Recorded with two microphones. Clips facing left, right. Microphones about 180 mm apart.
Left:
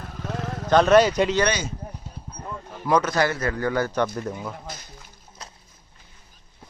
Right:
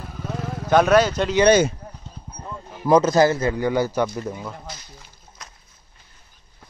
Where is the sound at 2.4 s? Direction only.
10° right (ahead or behind).